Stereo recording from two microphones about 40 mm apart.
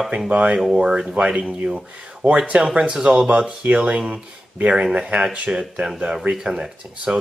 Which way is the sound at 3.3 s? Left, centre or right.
Right.